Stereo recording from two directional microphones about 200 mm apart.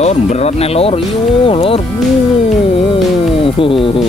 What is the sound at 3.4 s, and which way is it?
Speech, 25° left (ahead or behind).